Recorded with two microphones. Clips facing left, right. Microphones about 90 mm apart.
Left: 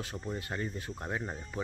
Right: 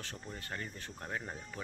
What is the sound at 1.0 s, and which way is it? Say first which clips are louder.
Speech: left 3 dB; 25° left (ahead or behind).